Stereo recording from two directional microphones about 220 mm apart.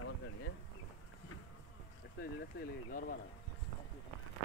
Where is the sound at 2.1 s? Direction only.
45° left (ahead or behind).